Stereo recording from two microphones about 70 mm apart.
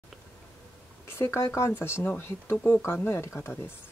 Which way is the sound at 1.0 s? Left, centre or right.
Left.